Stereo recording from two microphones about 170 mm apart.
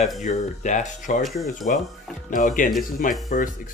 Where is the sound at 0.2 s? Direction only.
45° left (ahead or behind).